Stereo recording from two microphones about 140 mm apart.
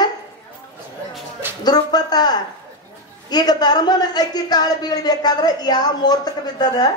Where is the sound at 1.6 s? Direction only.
30° left (ahead or behind).